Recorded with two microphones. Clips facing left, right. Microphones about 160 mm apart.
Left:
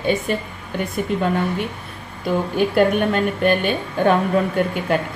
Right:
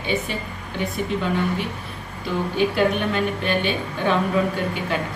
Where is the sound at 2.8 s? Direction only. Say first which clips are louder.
Left 4 dB; 50° left (ahead or behind).